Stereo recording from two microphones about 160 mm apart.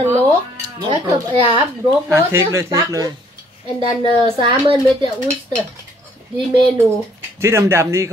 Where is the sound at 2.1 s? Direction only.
15° right (ahead or behind).